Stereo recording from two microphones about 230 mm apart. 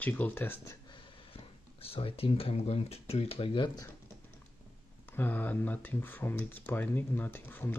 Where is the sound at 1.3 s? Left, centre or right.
Left.